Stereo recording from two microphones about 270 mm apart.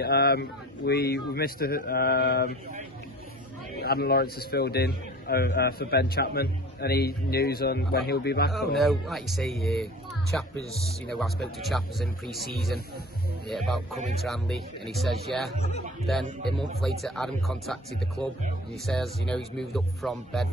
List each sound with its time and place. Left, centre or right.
0.0 s a man's voice: left
3.7 s a man's voice: left
8.5 s speech: centre
11.6 s speech: centre
13.5 s speech: centre